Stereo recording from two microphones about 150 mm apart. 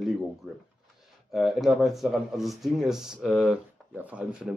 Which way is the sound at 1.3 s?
Centre (ahead or behind).